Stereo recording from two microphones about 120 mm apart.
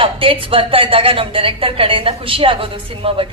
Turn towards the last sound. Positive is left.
turn(degrees=-50)  # may be behind; listen again after turning